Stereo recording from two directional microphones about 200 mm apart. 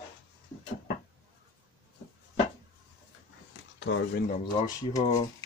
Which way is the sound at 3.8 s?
65° left (ahead or behind).